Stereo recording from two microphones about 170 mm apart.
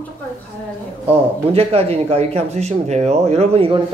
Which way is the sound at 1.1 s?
35° right (ahead or behind).